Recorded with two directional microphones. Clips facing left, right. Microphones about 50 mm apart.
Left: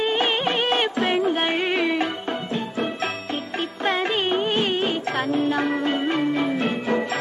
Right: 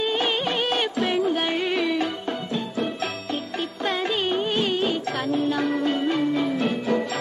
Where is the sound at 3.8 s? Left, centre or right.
Left.